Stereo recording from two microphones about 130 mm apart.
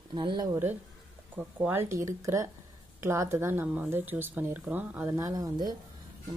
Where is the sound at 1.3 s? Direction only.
15° right (ahead or behind).